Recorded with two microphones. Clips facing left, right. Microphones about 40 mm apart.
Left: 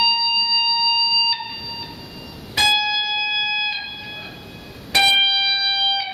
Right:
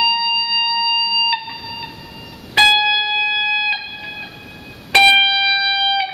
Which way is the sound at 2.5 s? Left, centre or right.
Right.